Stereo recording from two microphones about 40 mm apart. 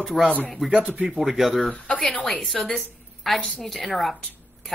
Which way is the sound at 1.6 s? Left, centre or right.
Left.